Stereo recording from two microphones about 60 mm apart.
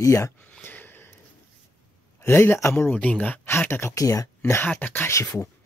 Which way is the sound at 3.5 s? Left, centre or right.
Left.